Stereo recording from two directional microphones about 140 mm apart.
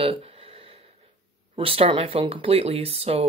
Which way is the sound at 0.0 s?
40° right (ahead or behind).